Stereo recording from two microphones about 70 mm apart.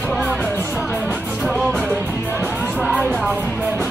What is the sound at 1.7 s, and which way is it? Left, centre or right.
Music, centre.